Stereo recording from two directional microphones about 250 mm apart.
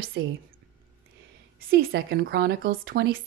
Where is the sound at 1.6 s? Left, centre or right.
Right.